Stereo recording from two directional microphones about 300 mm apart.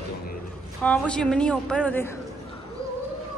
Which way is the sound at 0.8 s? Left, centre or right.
Centre.